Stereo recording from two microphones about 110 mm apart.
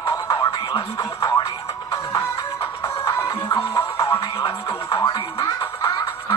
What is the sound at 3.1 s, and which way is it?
Music, 25° left (ahead or behind).